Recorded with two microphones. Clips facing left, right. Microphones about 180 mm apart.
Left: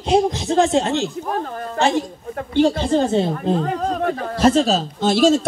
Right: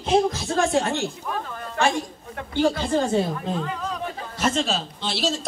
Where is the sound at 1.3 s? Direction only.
40° left (ahead or behind).